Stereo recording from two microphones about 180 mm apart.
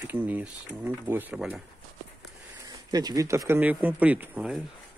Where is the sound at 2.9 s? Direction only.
20° right (ahead or behind).